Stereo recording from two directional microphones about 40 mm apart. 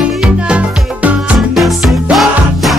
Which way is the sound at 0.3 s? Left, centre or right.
Right.